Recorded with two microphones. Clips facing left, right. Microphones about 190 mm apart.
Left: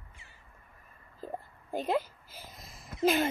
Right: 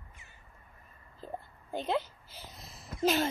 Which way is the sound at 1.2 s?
10° left (ahead or behind).